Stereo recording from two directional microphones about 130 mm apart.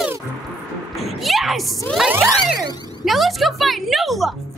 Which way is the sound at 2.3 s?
30° right (ahead or behind).